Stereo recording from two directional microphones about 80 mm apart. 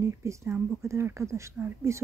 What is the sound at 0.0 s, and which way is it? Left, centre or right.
Speech, right.